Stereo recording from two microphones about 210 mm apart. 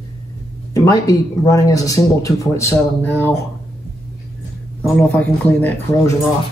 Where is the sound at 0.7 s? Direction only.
15° left (ahead or behind).